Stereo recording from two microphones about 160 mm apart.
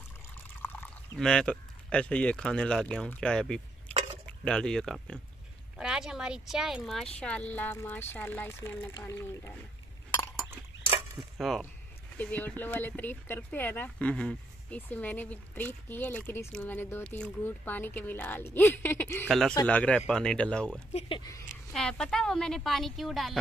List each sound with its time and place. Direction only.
1.1 s speech: 5° left (ahead or behind)
11.1 s speech: centre (ahead or behind)
21.2 s speech: 20° left (ahead or behind)
21.7 s speech: 5° left (ahead or behind)